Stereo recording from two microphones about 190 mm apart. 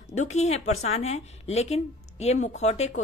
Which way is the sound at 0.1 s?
35° left (ahead or behind).